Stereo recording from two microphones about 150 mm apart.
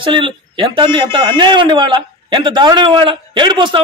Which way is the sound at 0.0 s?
35° right (ahead or behind).